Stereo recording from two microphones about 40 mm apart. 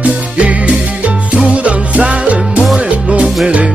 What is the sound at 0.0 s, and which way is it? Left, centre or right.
Music, right.